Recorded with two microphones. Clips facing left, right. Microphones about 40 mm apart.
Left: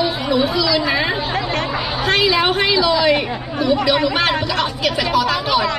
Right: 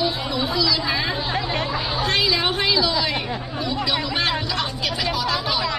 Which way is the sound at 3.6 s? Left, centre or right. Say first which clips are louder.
Left 10 dB; left.